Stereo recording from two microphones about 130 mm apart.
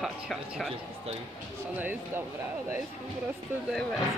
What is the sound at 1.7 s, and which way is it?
Speech, 15° right (ahead or behind).